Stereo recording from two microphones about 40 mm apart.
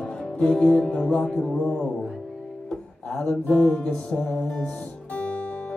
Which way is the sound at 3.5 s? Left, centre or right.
Left.